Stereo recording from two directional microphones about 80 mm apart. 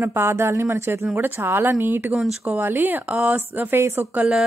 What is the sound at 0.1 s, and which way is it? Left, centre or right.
Speech, right.